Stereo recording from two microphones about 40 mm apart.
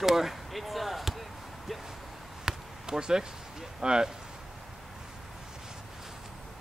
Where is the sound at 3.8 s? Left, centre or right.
Centre.